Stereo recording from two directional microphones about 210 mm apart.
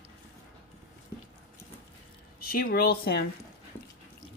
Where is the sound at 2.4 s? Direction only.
45° left (ahead or behind).